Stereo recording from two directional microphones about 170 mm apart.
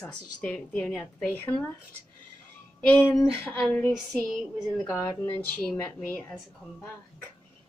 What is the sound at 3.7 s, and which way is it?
Music, 5° left (ahead or behind).